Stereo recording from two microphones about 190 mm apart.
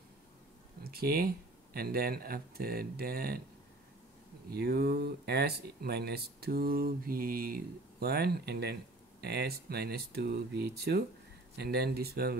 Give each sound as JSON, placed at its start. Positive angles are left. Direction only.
{"t": 0.8, "sound": "speech", "side_deg": -55}
{"t": 4.5, "sound": "speech", "side_deg": -55}